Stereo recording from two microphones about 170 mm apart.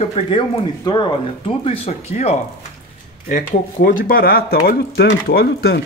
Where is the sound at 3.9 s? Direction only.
55° left (ahead or behind).